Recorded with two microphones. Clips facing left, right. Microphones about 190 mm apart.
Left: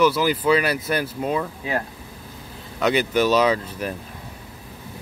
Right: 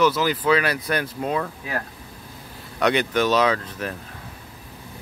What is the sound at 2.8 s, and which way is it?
Speech, 5° left (ahead or behind).